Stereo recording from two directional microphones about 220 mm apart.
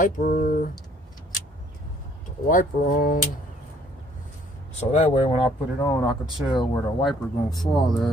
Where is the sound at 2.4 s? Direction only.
35° left (ahead or behind).